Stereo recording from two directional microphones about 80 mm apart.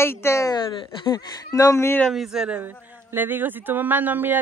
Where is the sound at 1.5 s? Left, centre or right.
Left.